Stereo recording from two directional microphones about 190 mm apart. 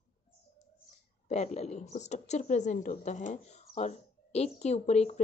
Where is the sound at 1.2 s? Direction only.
35° left (ahead or behind).